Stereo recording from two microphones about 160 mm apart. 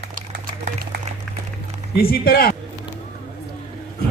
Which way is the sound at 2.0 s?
70° left (ahead or behind).